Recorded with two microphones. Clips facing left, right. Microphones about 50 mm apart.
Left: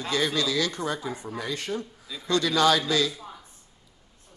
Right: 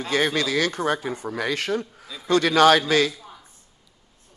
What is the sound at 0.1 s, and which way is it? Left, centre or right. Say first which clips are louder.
Speech: right 4 dB; right.